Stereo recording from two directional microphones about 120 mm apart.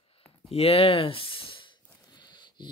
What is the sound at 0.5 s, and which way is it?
Speech, 55° left (ahead or behind).